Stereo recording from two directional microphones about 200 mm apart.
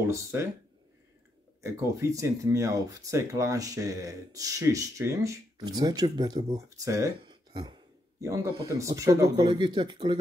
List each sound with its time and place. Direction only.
0.0 s speech: 15° right (ahead or behind)
1.6 s speech: 15° right (ahead or behind)